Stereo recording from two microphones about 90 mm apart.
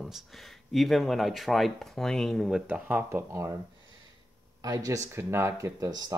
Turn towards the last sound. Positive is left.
turn(degrees=-45)  # may be behind; listen again after turning